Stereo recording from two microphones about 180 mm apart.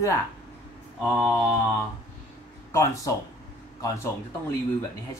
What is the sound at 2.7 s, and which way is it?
Speech, 15° left (ahead or behind).